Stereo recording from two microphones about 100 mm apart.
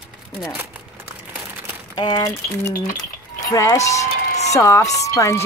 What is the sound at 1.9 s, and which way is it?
Speech, 45° left (ahead or behind).